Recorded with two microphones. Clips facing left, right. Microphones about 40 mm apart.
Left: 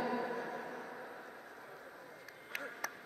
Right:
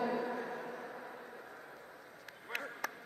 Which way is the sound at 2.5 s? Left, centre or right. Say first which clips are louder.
Right 2 dB; right.